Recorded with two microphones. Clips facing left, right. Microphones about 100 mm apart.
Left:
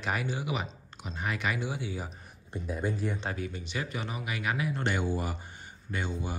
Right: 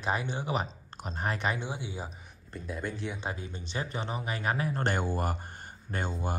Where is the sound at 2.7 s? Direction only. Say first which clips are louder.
Left 3 dB; 5° left (ahead or behind).